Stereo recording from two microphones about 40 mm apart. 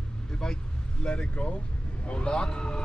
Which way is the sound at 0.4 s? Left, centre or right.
Centre.